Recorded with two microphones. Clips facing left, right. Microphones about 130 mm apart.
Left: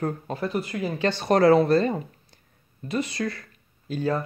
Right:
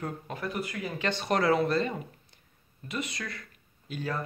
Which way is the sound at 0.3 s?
30° left (ahead or behind).